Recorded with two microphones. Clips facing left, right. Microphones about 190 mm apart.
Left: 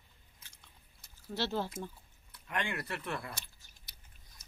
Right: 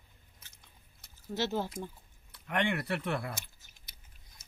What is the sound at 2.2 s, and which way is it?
Speech, 60° right (ahead or behind).